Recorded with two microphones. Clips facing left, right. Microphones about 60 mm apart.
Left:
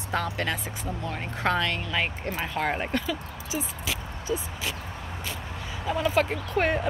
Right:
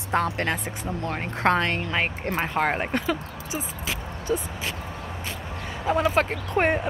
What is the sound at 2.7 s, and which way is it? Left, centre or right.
Speech, right.